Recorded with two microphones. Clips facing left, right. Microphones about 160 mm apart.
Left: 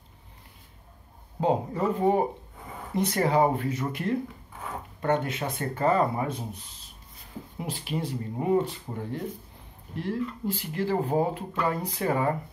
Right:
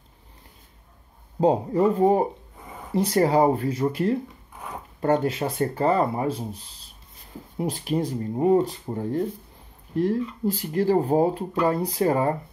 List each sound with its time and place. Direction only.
1.4 s speech: 35° right (ahead or behind)
7.5 s speech: 40° right (ahead or behind)
10.4 s speech: 40° right (ahead or behind)